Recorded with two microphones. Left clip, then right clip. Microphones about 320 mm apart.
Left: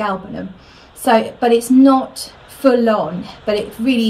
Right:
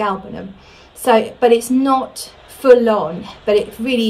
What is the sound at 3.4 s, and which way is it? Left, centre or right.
Speech, centre.